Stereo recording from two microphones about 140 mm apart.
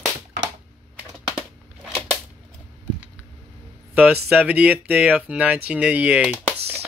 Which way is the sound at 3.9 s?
10° right (ahead or behind).